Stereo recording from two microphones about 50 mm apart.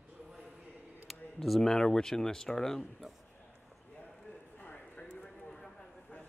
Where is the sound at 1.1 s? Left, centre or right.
Centre.